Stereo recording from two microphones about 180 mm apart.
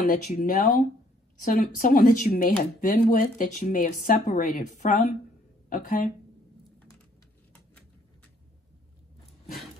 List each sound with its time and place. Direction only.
0.0 s speech: 45° left (ahead or behind)